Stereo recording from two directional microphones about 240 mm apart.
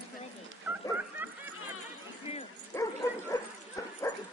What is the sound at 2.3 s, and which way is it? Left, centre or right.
Dog, left.